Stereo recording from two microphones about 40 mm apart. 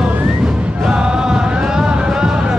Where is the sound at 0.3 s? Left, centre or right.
Centre.